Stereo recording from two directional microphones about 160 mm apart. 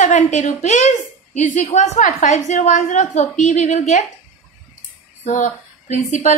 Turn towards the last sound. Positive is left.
turn(degrees=50)  # may be behind; listen again after turning